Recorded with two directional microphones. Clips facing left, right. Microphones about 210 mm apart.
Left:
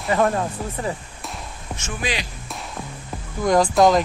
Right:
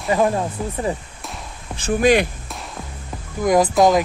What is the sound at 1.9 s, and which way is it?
Speech, 50° right (ahead or behind).